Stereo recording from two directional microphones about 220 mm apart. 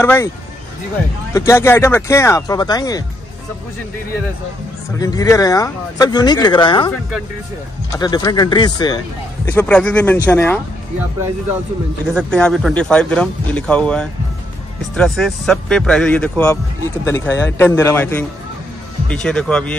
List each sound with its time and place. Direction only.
0.0 s speech: 10° left (ahead or behind)
1.3 s speech: 10° left (ahead or behind)
4.9 s speech: 15° left (ahead or behind)
7.9 s speech: 20° left (ahead or behind)
9.5 s speech: 5° left (ahead or behind)
12.1 s speech: 5° left (ahead or behind)